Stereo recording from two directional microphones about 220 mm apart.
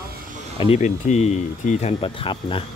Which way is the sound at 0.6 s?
30° left (ahead or behind).